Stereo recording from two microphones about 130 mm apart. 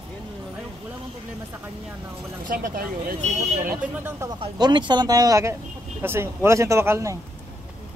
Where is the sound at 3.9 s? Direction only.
15° right (ahead or behind).